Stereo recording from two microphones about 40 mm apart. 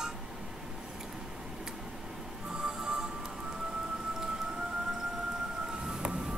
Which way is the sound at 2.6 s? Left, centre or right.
Centre.